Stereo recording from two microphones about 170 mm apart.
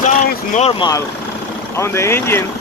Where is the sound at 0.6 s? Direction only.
30° left (ahead or behind).